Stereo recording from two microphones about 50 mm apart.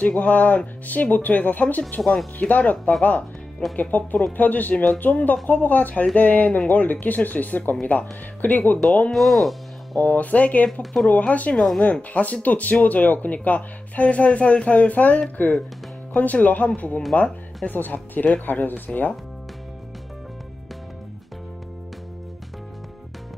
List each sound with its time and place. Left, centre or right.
0.0 s speech: left
2.0 s speech: centre
2.3 s speech: left
9.1 s speech: centre
10.1 s speech: left
10.8 s speech: centre
11.1 s speech: left